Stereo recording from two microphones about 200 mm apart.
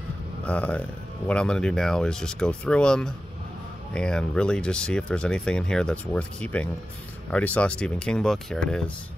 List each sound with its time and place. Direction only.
0.5 s speech: 5° left (ahead or behind)